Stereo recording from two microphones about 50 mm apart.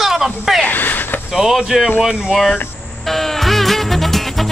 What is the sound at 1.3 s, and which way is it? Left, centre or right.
Speech, centre.